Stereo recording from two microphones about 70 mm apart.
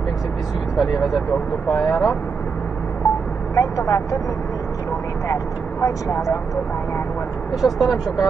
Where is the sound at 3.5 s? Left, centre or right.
Left.